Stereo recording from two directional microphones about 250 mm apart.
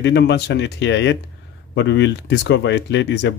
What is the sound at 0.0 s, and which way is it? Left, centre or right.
Speech, left.